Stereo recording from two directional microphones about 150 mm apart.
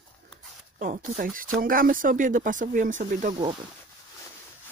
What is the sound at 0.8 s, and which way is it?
Speech, 55° right (ahead or behind).